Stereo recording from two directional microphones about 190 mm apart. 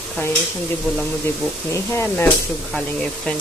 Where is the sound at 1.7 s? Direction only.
10° left (ahead or behind).